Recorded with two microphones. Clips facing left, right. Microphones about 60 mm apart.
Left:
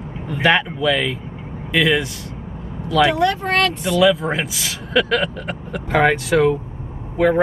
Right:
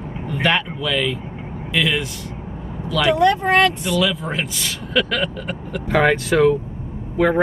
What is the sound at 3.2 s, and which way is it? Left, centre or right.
Speech, centre.